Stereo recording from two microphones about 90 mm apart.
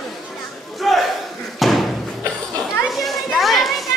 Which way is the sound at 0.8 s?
Centre (ahead or behind).